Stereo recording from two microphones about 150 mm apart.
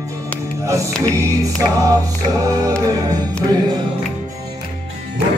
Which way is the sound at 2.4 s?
20° right (ahead or behind).